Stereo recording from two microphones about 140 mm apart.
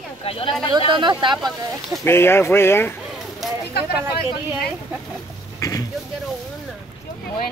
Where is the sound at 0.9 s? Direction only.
35° right (ahead or behind).